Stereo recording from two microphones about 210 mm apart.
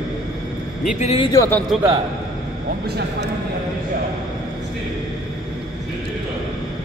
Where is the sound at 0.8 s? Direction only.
35° left (ahead or behind).